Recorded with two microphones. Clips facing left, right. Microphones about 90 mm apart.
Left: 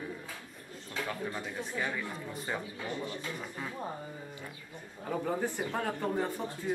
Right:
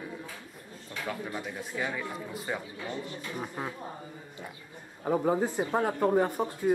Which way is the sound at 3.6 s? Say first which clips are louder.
Right 6 dB; 30° right (ahead or behind).